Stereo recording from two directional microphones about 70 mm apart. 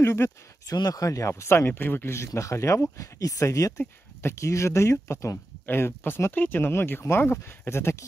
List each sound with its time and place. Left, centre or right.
0.0 s speech: left
0.7 s speech: left
1.3 s speech: left
5.7 s speech: left